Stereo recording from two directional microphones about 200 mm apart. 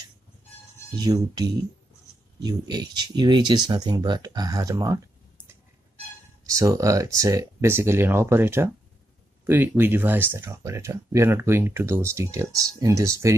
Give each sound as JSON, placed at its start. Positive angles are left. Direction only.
{"t": 0.9, "sound": "speech", "side_deg": -20}
{"t": 6.4, "sound": "speech", "side_deg": -15}